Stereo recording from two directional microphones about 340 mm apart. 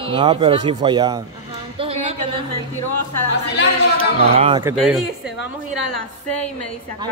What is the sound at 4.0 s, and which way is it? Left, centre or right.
Speech, centre.